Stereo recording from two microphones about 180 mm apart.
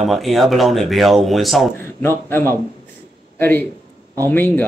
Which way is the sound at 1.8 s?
10° left (ahead or behind).